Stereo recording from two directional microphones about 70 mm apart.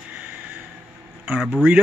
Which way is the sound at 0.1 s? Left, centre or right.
Right.